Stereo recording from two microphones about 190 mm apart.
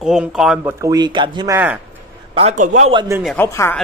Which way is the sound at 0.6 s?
15° right (ahead or behind).